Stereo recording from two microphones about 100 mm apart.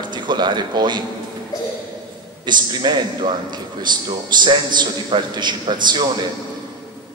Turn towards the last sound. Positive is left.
turn(degrees=-50)  # may be behind; listen again after turning